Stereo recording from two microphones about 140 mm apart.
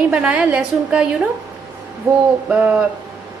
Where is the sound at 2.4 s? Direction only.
10° right (ahead or behind).